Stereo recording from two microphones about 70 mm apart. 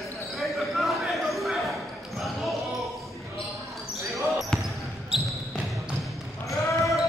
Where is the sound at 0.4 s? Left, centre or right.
Centre.